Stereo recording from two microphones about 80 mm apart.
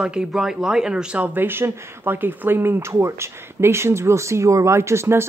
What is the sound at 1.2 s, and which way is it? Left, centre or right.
Speech, right.